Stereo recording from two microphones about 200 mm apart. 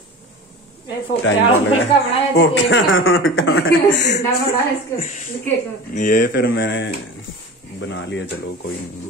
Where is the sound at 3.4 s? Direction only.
50° left (ahead or behind).